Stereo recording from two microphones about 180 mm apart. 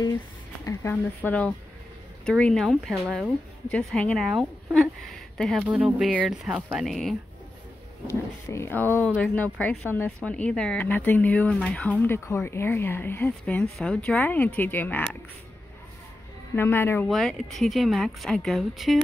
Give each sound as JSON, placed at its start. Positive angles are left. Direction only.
{"t": 0.7, "sound": "a woman's voice", "side_deg": 10}
{"t": 8.5, "sound": "speech", "side_deg": 15}
{"t": 16.5, "sound": "speech", "side_deg": 10}
{"t": 17.1, "sound": "a woman's voice", "side_deg": 0}